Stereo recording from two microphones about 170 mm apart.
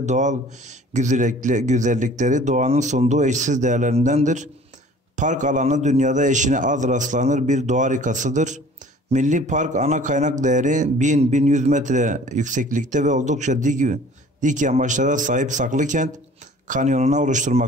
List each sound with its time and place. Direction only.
0.0 s speech: 45° right (ahead or behind)